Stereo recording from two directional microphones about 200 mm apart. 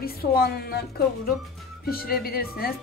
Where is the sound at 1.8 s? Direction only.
50° left (ahead or behind).